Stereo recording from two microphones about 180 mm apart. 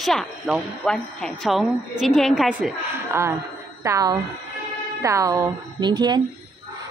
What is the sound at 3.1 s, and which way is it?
A woman's voice, 15° right (ahead or behind).